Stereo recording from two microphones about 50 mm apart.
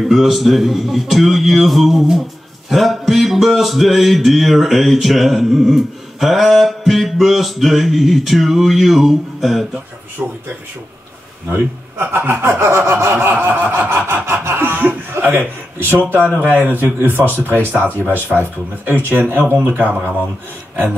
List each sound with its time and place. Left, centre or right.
0.1 s a sound: centre
11.4 s a man's voice: right
12.4 s snicker: right
14.0 s a sound: right
14.6 s a man's voice: right
15.9 s snicker: right
16.3 s a man's voice: right
17.0 s snicker: right